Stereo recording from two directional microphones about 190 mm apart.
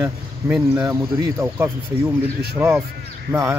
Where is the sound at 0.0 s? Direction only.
10° right (ahead or behind).